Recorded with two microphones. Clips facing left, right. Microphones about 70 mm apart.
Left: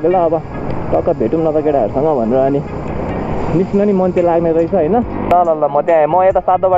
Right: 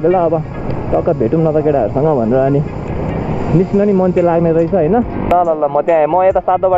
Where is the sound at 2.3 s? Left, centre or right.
Right.